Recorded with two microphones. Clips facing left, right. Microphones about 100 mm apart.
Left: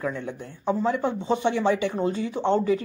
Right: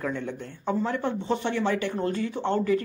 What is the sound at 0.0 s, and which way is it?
Speech, 5° left (ahead or behind).